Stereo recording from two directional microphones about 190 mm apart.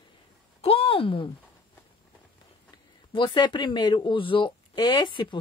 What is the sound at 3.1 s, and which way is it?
Speech, 25° left (ahead or behind).